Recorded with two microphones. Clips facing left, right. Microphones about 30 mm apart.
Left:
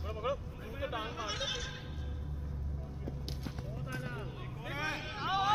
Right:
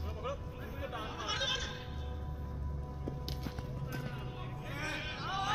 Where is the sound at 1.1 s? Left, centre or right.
Centre.